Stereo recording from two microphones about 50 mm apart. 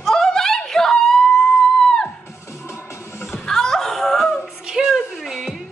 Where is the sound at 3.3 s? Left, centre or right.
Centre.